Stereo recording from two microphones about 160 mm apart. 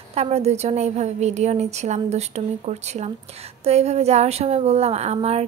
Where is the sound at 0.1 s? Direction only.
40° right (ahead or behind).